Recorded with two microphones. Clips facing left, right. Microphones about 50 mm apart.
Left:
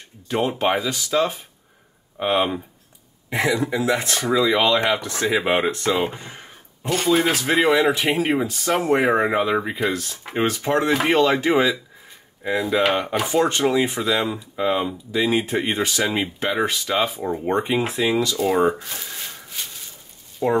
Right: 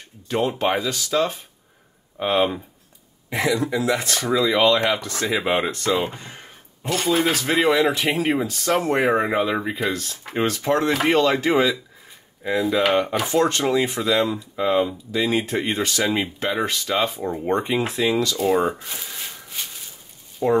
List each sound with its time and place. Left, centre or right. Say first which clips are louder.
0.3 s speech: left 1 dB; centre
3.3 s speech: left 1 dB; left
4.6 s speech: right 1 dB; centre
6.0 s speech: left 2 dB; centre
6.8 s speech: left 2 dB; centre
17.5 s speech: even; centre
20.4 s speech: right 1 dB; left